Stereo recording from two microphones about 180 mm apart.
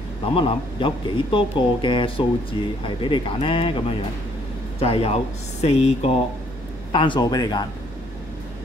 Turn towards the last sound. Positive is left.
turn(degrees=20)  # may be behind; listen again after turning